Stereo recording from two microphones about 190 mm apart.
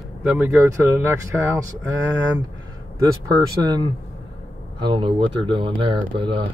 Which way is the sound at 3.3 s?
20° right (ahead or behind).